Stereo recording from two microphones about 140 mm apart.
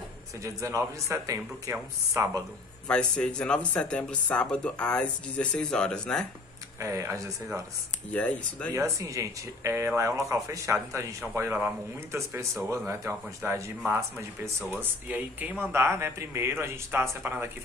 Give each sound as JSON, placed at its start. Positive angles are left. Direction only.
{"t": 0.4, "sound": "a man's voice", "side_deg": -20}
{"t": 2.9, "sound": "speech", "side_deg": 5}
{"t": 6.8, "sound": "a man's voice", "side_deg": -20}
{"t": 8.1, "sound": "speech", "side_deg": 10}
{"t": 8.7, "sound": "a man's voice", "side_deg": -20}